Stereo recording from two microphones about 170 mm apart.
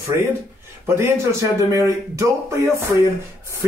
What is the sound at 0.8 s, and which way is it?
Speech, 15° right (ahead or behind).